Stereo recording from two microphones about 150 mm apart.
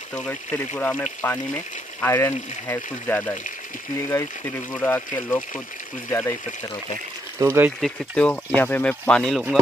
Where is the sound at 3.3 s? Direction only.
60° left (ahead or behind).